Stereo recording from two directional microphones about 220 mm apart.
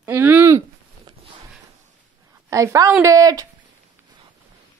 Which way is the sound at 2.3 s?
15° right (ahead or behind).